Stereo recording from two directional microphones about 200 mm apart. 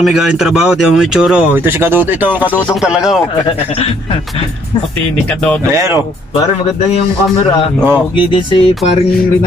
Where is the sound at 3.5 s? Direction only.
30° left (ahead or behind).